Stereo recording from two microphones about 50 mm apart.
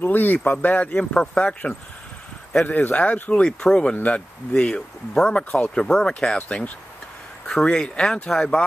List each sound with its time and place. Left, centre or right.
0.0 s speech: left
2.6 s speech: left
3.3 s speech: centre
3.9 s speech: left
4.6 s speech: centre
7.7 s speech: centre